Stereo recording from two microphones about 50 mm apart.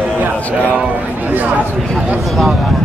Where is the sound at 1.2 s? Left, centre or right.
Right.